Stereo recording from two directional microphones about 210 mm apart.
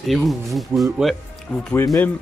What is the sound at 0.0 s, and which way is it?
Speech, centre (ahead or behind).